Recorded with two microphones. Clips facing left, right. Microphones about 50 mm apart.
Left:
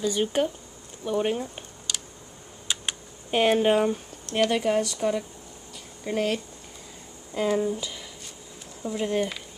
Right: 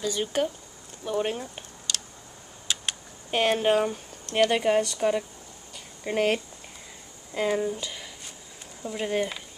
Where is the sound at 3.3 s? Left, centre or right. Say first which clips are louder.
Left 2 dB; centre.